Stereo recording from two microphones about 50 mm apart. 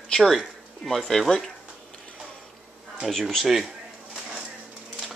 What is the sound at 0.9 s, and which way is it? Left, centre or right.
Speech, centre.